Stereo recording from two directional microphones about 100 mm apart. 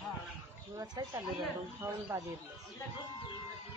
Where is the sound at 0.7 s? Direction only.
40° right (ahead or behind).